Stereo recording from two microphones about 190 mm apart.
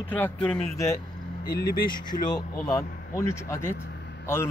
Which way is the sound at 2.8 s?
50° left (ahead or behind).